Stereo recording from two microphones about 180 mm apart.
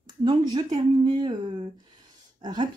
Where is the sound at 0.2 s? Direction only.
25° right (ahead or behind).